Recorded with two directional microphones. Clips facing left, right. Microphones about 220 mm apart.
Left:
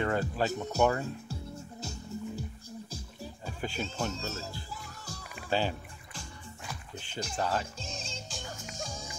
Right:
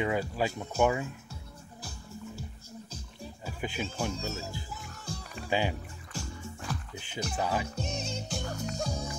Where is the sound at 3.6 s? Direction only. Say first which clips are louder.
Right 1 dB; 10° right (ahead or behind).